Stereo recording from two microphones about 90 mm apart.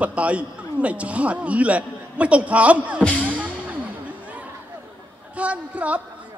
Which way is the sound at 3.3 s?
15° right (ahead or behind).